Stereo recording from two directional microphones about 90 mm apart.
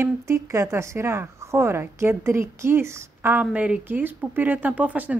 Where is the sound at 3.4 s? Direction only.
15° right (ahead or behind).